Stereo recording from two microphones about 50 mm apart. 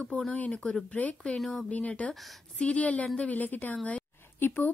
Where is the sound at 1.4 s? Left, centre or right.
Centre.